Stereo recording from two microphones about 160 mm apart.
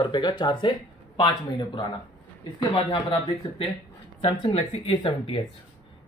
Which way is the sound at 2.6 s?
25° left (ahead or behind).